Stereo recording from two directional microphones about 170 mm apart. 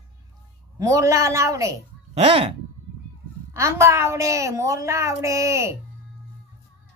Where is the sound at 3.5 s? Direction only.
15° right (ahead or behind).